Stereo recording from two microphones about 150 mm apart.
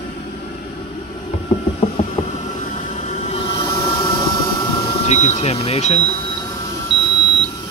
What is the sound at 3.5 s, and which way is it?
Train, 25° left (ahead or behind).